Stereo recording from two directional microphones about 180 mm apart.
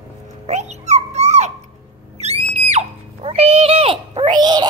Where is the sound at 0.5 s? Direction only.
40° right (ahead or behind).